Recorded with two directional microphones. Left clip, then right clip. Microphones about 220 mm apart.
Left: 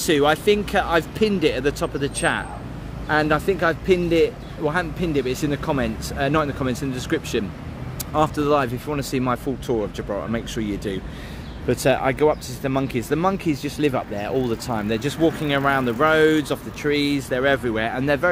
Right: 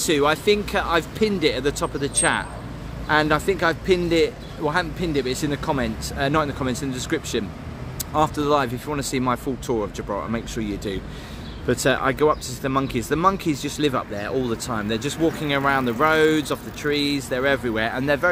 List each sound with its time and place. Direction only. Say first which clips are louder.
0.0 s speech: left 1 dB; 5° left (ahead or behind)